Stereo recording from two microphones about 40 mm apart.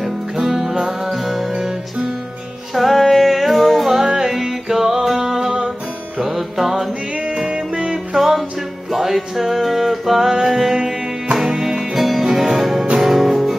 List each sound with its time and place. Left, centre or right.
0.0 s music: centre
2.7 s music: centre
4.0 s music: centre
7.2 s music: right